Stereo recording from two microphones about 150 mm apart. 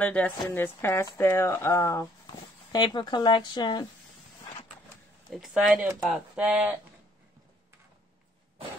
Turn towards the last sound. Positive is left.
turn(degrees=-10)  # may be behind; listen again after turning